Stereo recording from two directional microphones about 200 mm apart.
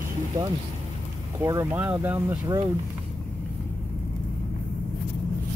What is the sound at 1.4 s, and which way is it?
Speech, 15° right (ahead or behind).